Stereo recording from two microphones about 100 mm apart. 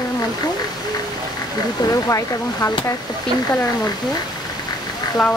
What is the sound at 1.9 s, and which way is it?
Speech, 30° left (ahead or behind).